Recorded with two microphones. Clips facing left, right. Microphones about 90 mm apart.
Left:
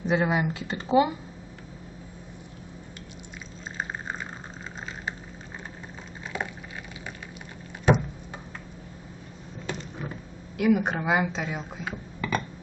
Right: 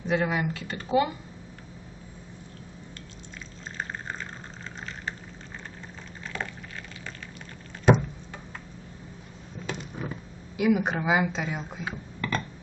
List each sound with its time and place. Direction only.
0.0 s speech: 20° left (ahead or behind)
3.7 s fill: 15° left (ahead or behind)
6.3 s boiling: 15° left (ahead or behind)
9.7 s a sound: centre (ahead or behind)
10.6 s speech: centre (ahead or behind)